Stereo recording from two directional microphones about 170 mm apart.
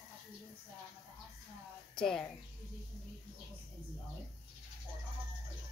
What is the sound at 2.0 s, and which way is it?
Speech, 5° left (ahead or behind).